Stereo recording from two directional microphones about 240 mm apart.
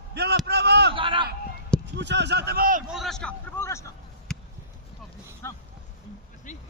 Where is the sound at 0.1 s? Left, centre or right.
Right.